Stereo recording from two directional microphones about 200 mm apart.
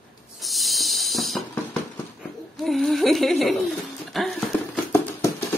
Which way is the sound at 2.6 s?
Centre (ahead or behind).